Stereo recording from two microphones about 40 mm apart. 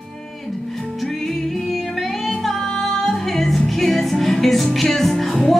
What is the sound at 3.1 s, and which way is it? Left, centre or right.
Music, centre.